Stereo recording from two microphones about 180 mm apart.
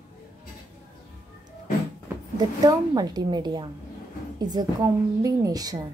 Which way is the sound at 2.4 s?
20° right (ahead or behind).